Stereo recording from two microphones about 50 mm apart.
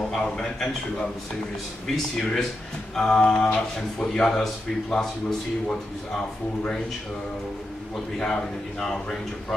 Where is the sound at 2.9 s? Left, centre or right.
Centre.